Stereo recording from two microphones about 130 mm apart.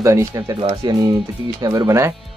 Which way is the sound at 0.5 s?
35° right (ahead or behind).